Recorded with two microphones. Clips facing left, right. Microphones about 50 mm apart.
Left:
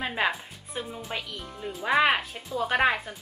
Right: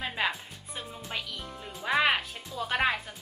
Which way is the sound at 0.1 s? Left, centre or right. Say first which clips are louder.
Left 3 dB; centre.